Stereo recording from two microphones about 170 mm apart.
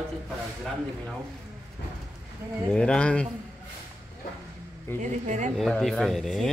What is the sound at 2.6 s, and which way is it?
Speech, 5° left (ahead or behind).